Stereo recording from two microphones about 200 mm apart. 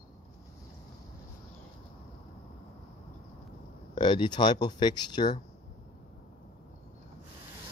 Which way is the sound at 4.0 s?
20° left (ahead or behind).